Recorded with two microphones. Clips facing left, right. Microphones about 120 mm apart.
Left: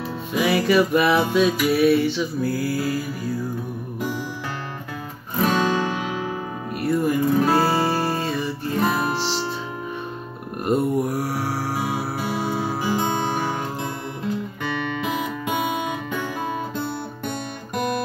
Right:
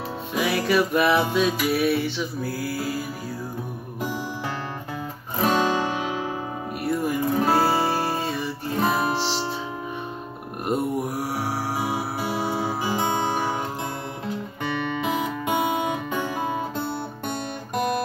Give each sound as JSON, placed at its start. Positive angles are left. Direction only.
{"t": 0.4, "sound": "music", "side_deg": 0}
{"t": 5.4, "sound": "guitar", "side_deg": -35}
{"t": 5.9, "sound": "music", "side_deg": -25}
{"t": 6.8, "sound": "music", "side_deg": -5}
{"t": 8.8, "sound": "guitar", "side_deg": -25}
{"t": 10.6, "sound": "mantra", "side_deg": -5}
{"t": 12.2, "sound": "music", "side_deg": -15}
{"t": 15.0, "sound": "music", "side_deg": -30}